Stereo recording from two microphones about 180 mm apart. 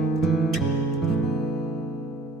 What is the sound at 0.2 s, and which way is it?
Music, centre (ahead or behind).